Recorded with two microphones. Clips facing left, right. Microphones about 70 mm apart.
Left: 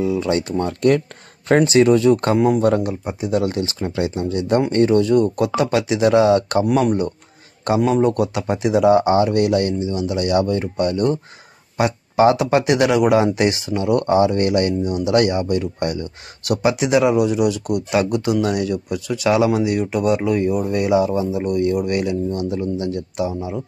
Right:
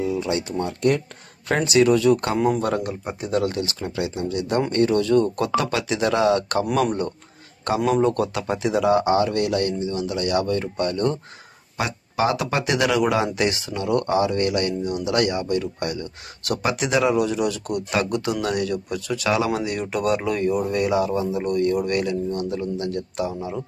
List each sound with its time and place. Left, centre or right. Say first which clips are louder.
0.0 s speech: left 4 dB; left
1.5 s speech: left 4 dB; left
2.3 s speech: left 4 dB; centre
2.6 s speech: left 6 dB; left
3.2 s speech: left 3 dB; centre
3.5 s speech: left 4 dB; left
6.6 s speech: left 4 dB; centre
11.7 s speech: left 7 dB; left; by 19.2 s centre
19.2 s speech: left 6 dB; centre
19.6 s speech: left 5 dB; centre